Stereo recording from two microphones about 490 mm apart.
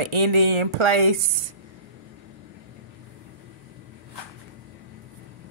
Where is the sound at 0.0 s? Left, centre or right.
Right.